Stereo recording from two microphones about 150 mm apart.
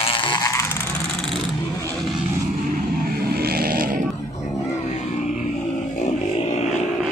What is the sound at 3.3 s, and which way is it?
Vehicle, 90° right.